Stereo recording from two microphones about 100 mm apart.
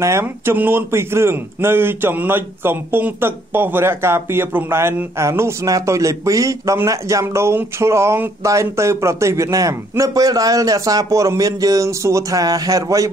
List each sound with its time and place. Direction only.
0.0 s speech: 25° right (ahead or behind)